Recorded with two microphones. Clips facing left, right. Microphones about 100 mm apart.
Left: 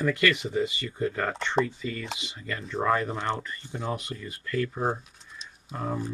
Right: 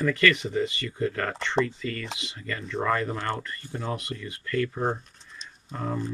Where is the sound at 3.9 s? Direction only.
5° left (ahead or behind).